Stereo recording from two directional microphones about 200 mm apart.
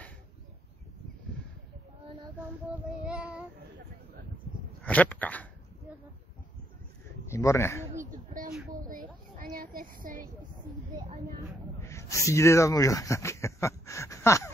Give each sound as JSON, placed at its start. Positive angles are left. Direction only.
{"t": 3.1, "sound": "child singing", "side_deg": -5}
{"t": 4.8, "sound": "speech", "side_deg": 5}
{"t": 7.2, "sound": "speech", "side_deg": 15}
{"t": 8.0, "sound": "a sound", "side_deg": -40}
{"t": 11.8, "sound": "speech", "side_deg": 15}